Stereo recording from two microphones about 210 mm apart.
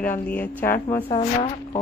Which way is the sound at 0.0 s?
10° left (ahead or behind).